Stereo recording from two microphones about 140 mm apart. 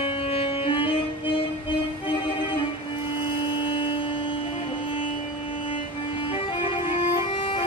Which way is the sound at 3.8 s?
40° left (ahead or behind).